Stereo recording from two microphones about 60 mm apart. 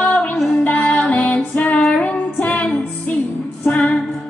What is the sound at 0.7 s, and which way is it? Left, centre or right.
Female singing, left.